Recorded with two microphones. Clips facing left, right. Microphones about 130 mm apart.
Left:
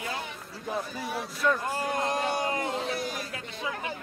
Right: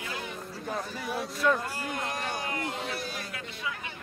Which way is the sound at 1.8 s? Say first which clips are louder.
Left 5 dB; 35° left (ahead or behind).